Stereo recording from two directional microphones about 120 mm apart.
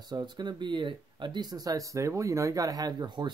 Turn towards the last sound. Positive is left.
turn(degrees=-40)  # may be behind; listen again after turning